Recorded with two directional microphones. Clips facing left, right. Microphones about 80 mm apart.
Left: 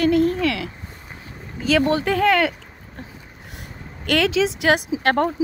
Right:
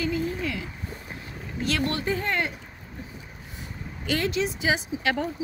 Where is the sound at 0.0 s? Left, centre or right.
Left.